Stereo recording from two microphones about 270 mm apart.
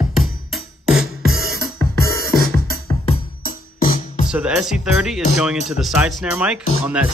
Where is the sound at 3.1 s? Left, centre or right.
Left.